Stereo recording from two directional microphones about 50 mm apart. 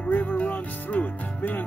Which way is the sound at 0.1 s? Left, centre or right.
Left.